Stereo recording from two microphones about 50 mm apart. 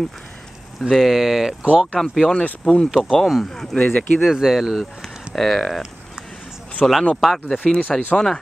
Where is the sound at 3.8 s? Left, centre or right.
Left.